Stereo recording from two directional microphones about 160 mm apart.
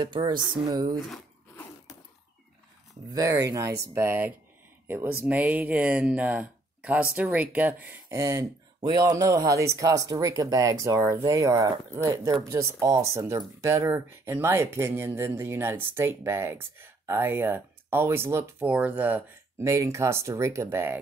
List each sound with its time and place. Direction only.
0.0 s speech: 30° right (ahead or behind)
0.9 s speech: centre (ahead or behind)
3.1 s speech: 20° right (ahead or behind)